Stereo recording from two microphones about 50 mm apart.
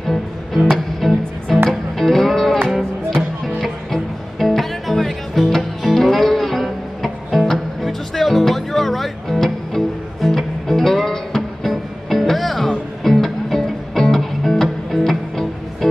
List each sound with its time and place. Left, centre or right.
0.0 s music: centre